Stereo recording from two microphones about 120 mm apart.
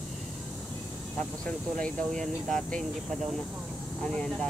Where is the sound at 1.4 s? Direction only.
5° left (ahead or behind).